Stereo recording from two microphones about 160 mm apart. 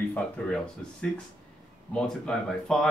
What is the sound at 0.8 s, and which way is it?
Speech, 5° left (ahead or behind).